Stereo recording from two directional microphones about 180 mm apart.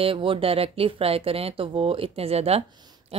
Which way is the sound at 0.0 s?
30° right (ahead or behind).